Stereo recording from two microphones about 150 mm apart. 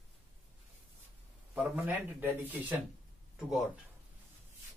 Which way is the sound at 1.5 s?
15° right (ahead or behind).